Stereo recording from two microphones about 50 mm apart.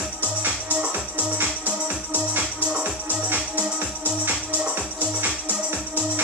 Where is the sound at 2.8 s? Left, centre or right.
Right.